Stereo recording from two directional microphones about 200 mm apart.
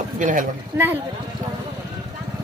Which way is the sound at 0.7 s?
10° right (ahead or behind).